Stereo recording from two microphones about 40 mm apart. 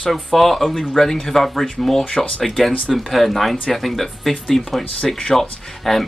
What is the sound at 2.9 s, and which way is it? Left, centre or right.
Speech, centre.